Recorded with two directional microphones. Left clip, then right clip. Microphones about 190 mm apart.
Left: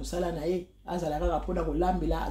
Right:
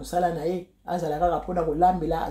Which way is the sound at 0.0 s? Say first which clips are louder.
Right 7 dB; 20° right (ahead or behind).